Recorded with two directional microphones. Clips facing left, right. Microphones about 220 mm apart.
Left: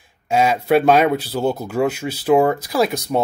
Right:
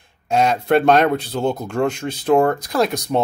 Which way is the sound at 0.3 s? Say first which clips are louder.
Even; 5° left (ahead or behind).